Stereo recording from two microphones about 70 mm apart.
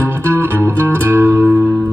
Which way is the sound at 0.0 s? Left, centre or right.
Right.